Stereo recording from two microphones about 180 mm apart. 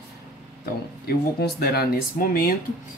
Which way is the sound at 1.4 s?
60° left (ahead or behind).